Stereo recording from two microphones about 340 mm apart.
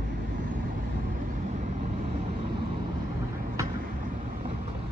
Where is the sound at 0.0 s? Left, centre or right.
Right.